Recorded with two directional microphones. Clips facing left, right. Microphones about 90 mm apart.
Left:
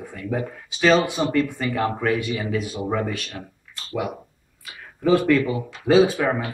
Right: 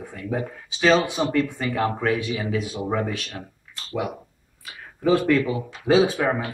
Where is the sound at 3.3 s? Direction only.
15° right (ahead or behind).